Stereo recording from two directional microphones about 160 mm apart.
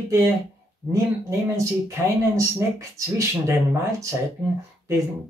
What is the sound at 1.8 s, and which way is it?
Speech, 20° right (ahead or behind).